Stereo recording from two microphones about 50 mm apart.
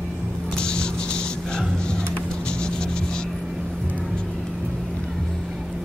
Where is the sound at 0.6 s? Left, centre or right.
Centre.